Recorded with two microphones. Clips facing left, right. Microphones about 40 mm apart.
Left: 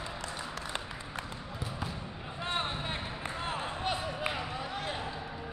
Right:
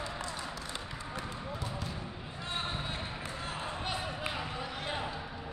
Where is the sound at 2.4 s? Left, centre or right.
Left.